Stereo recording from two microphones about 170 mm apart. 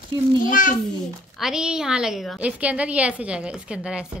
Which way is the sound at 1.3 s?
5° right (ahead or behind).